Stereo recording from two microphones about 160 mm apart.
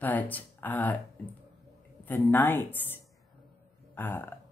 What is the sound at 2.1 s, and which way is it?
Speech, 10° left (ahead or behind).